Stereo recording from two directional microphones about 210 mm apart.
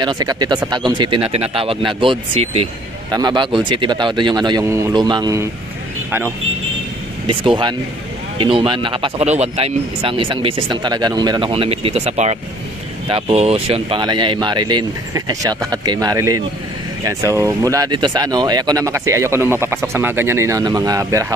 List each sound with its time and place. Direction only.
0.0 s speech: 20° right (ahead or behind)
7.2 s speech: 20° right (ahead or behind)